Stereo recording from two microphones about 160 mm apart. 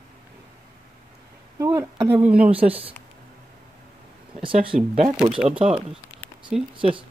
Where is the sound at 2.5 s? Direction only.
35° right (ahead or behind).